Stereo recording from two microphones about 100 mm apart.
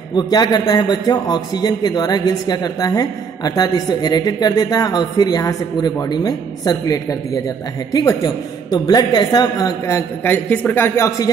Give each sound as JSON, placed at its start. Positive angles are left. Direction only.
{"t": 0.1, "sound": "a man's voice", "side_deg": 45}
{"t": 10.2, "sound": "a woman's voice", "side_deg": 15}
{"t": 10.7, "sound": "speech", "side_deg": 25}